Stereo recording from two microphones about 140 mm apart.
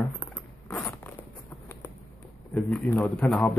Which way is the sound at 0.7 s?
20° left (ahead or behind).